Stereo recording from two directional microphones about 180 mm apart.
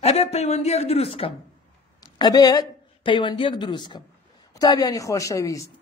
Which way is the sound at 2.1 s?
20° left (ahead or behind).